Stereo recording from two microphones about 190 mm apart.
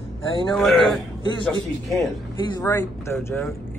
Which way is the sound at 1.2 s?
25° left (ahead or behind).